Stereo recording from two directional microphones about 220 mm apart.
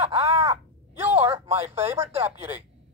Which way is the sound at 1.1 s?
25° right (ahead or behind).